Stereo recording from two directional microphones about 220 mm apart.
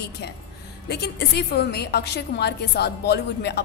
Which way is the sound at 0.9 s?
50° left (ahead or behind).